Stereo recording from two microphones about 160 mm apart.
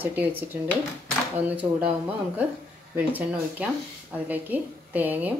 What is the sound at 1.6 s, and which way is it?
Speech, 15° right (ahead or behind).